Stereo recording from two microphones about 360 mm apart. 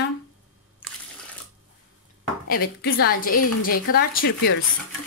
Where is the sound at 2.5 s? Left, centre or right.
Left.